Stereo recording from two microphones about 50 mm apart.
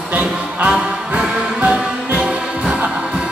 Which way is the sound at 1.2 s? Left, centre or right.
Right.